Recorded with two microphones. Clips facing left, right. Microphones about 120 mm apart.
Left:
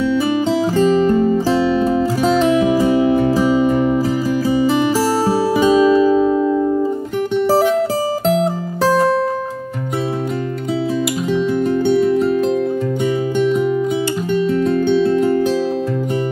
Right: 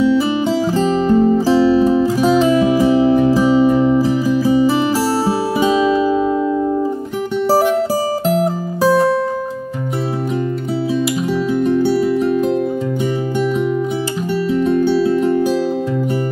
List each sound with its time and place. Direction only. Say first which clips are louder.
0.7 s music: left 1 dB; 40° right (ahead or behind)
1.4 s music: right 3 dB; 10° right (ahead or behind)
14.8 s music: even; 5° right (ahead or behind)